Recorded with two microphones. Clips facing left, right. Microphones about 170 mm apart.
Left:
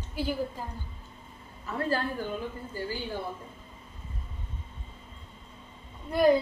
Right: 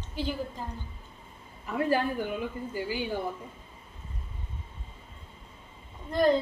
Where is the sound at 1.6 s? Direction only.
15° right (ahead or behind).